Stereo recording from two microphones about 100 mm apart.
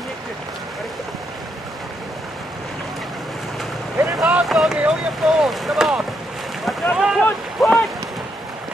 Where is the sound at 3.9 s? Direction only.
25° right (ahead or behind).